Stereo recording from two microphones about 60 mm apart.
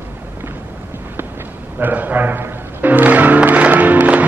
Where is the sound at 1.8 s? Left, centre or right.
Right.